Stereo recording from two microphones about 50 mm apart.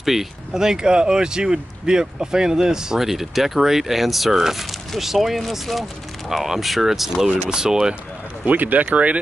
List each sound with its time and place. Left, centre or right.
0.0 s speech: centre
8.5 s speech: right